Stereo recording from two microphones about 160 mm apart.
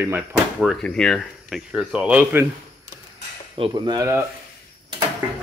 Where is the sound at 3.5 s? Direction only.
25° right (ahead or behind).